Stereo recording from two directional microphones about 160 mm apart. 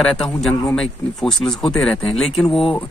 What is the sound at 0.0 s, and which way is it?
Speech, centre (ahead or behind).